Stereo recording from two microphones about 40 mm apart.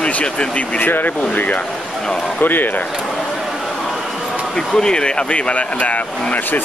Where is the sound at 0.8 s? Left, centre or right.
Left.